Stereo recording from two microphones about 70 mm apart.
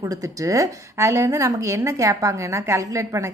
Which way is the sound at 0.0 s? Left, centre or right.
Right.